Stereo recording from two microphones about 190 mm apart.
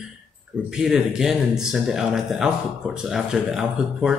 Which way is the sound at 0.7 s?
5° right (ahead or behind).